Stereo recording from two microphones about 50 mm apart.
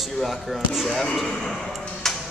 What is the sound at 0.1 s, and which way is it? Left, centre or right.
Speech, centre.